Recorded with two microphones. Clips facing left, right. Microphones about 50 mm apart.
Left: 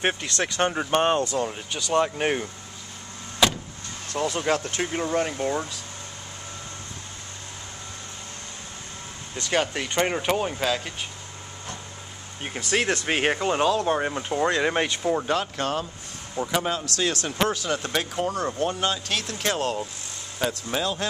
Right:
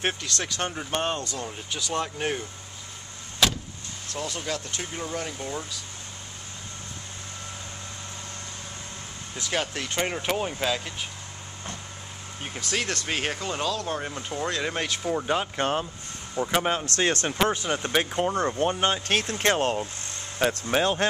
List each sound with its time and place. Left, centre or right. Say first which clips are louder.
0.0 s speech: left 4 dB; centre
3.4 s vehicle: left 2 dB; centre
4.2 s speech: left 7 dB; left
9.4 s speech: left 4 dB; centre
12.7 s speech: left 5 dB; centre
14.9 s speech: left 3 dB; centre
15.5 s speech: right 1 dB; right
17.5 s speech: even; right
18.6 s speech: right 1 dB; right